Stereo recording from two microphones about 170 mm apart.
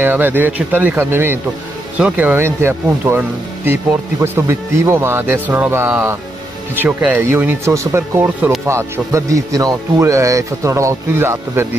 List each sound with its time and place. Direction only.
0.0 s speech: 10° right (ahead or behind)